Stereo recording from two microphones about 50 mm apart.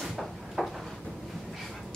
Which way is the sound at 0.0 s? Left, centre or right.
Centre.